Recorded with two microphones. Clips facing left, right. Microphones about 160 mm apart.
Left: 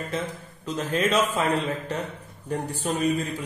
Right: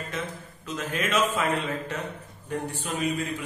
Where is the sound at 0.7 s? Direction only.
35° left (ahead or behind).